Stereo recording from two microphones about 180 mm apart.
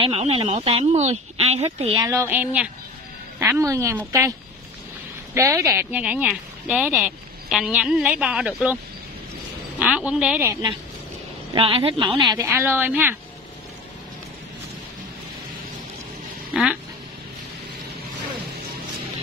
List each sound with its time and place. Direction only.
0.0 s speech: 30° right (ahead or behind)
2.0 s a woman's voice: 10° right (ahead or behind)
5.3 s a woman's voice: 15° right (ahead or behind)
9.8 s speech: 5° right (ahead or behind)
11.5 s a woman's voice: 30° right (ahead or behind)
12.4 s a woman's voice: 15° right (ahead or behind)
16.5 s speech: 5° right (ahead or behind)